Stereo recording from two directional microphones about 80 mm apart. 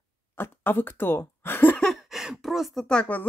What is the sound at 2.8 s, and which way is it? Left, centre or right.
Speech, centre.